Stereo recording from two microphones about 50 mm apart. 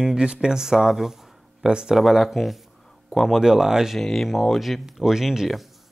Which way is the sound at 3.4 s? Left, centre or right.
Centre.